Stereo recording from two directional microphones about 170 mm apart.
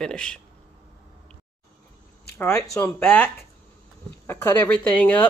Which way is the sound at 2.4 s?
15° left (ahead or behind).